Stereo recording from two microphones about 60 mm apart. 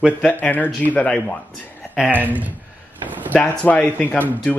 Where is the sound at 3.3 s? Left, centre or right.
Left.